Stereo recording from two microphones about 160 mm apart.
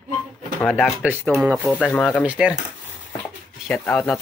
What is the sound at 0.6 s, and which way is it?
Speech, centre (ahead or behind).